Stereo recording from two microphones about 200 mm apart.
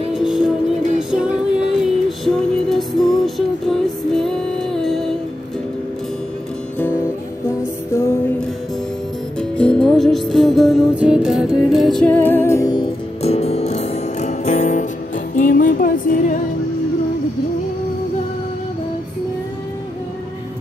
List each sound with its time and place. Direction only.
0.1 s music: centre (ahead or behind)
7.4 s music: 15° left (ahead or behind); by 16.3 s 40° left (ahead or behind)